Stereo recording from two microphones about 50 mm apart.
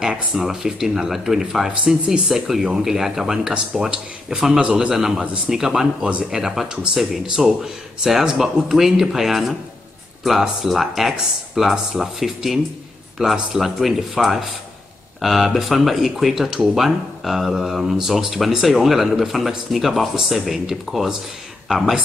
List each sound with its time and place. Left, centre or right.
0.0 s speech: centre